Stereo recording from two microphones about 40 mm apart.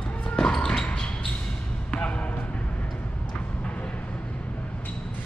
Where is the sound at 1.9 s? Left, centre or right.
Left.